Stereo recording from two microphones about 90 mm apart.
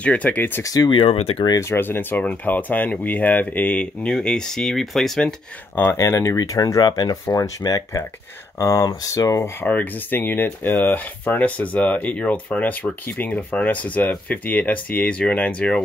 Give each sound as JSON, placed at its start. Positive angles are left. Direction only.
{"t": 0.0, "sound": "speech", "side_deg": 15}
{"t": 0.8, "sound": "speech", "side_deg": 80}
{"t": 1.6, "sound": "speech", "side_deg": 25}
{"t": 5.9, "sound": "speech", "side_deg": 30}
{"t": 9.6, "sound": "speech", "side_deg": 20}